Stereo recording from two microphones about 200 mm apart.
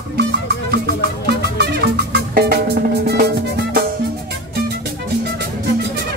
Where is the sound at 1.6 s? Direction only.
55° right (ahead or behind).